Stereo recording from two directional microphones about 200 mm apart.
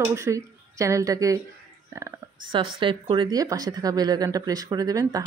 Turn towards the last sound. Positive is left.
turn(degrees=-15)  # may be behind; listen again after turning